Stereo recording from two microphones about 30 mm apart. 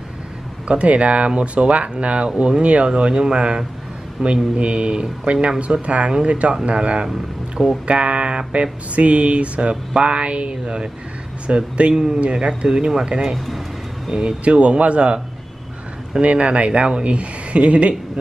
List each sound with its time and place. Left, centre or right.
0.7 s speech: right
2.9 s speech: right
11.4 s speech: right
14.1 s speech: right
14.4 s speech: right
16.2 s speech: right